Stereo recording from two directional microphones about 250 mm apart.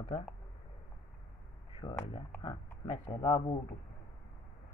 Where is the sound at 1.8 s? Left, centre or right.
Left.